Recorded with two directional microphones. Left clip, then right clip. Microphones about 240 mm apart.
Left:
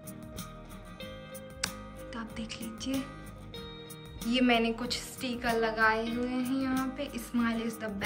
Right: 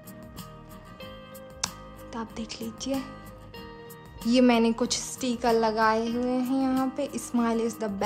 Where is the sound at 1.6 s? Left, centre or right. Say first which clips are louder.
Right 3 dB; centre.